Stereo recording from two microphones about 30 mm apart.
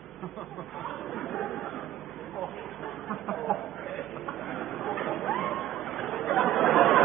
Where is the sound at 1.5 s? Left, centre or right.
Centre.